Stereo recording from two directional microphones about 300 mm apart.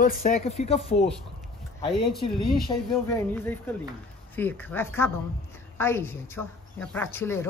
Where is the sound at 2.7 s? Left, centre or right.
Centre.